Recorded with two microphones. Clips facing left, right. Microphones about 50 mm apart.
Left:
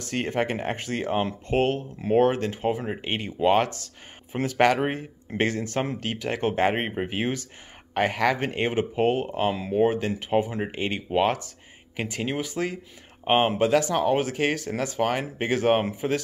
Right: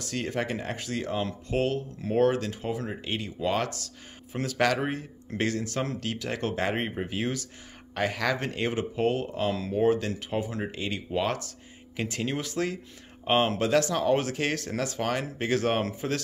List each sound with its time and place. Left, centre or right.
0.0 s speech: left
12.0 s speech: centre